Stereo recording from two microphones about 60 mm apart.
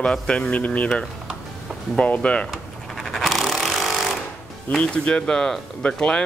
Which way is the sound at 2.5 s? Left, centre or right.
Centre.